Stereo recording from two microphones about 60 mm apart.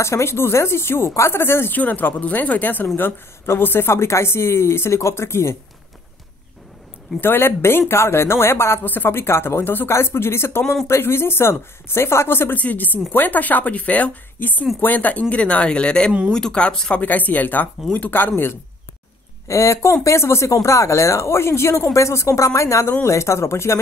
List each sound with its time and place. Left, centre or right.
0.0 s a woman's voice: left
1.8 s a woman's voice: left
7.2 s a woman's voice: left
8.8 s a woman's voice: left
12.5 s speech: left
17.0 s speech: left
19.4 s speech: left
20.6 s a woman's voice: left
21.9 s a woman's voice: left